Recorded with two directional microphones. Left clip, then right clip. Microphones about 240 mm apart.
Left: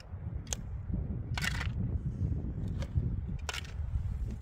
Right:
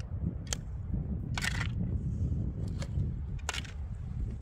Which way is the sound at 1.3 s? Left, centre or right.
Centre.